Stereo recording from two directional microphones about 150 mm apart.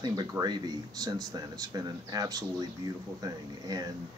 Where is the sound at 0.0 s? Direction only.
25° right (ahead or behind).